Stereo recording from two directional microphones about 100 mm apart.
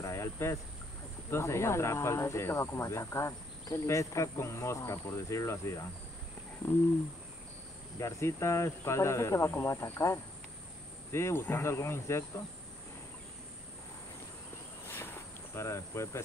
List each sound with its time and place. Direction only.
0.0 s a sound: 30° left (ahead or behind)
1.3 s speech: 25° left (ahead or behind)
8.0 s speech: 30° left (ahead or behind)
15.5 s speech: 25° left (ahead or behind)